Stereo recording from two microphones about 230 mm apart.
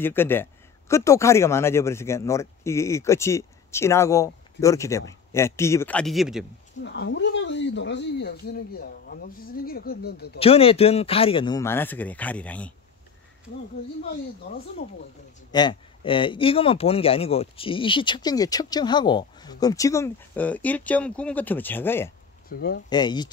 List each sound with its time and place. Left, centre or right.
0.0 s a man's voice: centre
6.8 s speech: left
10.4 s a man's voice: left; by 12.7 s centre
15.5 s a man's voice: left
22.5 s speech: left
22.8 s speech: centre